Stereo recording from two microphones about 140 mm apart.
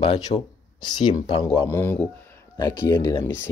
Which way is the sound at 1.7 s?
15° left (ahead or behind).